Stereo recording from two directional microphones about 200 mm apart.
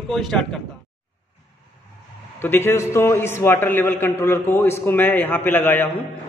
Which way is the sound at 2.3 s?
10° left (ahead or behind).